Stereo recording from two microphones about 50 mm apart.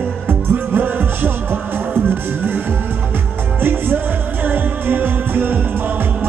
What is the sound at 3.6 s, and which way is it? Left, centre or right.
Music, right.